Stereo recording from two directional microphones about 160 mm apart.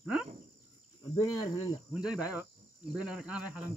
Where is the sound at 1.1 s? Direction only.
25° left (ahead or behind).